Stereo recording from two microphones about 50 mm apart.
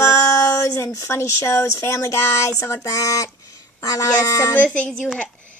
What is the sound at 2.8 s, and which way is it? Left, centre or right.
Child singing, left.